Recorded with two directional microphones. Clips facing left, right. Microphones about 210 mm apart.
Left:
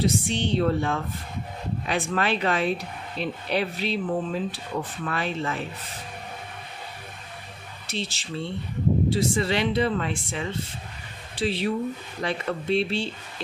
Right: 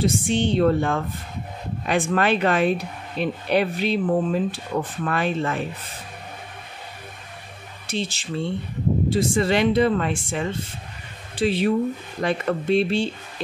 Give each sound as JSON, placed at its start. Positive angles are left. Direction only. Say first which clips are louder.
{"t": 0.0, "sound": "speech", "louder": "right 4 dB", "side_deg": -50}
{"t": 7.8, "sound": "speech", "louder": "right 5 dB", "side_deg": -50}